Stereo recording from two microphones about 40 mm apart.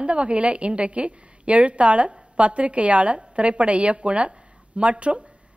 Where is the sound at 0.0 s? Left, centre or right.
Right.